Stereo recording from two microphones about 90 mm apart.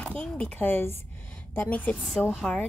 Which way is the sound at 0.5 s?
25° left (ahead or behind).